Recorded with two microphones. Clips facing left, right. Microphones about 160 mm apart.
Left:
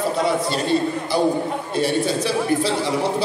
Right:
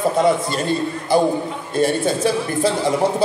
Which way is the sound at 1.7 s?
50° right (ahead or behind).